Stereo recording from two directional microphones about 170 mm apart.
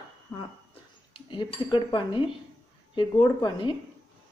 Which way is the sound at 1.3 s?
30° left (ahead or behind).